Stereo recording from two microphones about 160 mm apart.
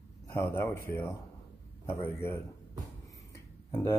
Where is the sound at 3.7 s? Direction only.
15° left (ahead or behind).